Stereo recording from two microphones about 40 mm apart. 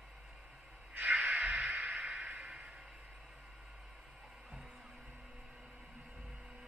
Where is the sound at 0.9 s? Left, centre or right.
Right.